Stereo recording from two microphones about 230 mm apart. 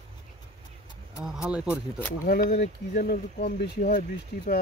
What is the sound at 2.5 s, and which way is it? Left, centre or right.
Speech, left.